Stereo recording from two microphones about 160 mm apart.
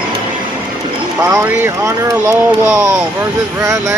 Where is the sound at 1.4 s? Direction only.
15° right (ahead or behind).